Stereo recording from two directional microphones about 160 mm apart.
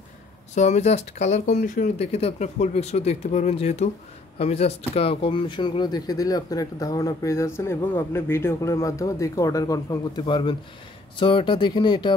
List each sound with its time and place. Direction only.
0.6 s speech: 45° left (ahead or behind); by 12.2 s 30° left (ahead or behind)